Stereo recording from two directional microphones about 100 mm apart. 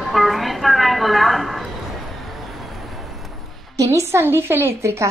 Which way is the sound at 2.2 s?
Centre (ahead or behind).